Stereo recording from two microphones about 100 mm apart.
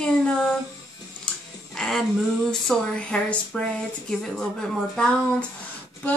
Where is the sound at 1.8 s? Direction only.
5° left (ahead or behind).